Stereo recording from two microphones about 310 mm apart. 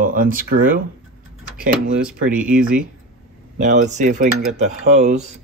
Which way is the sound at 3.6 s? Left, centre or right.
Right.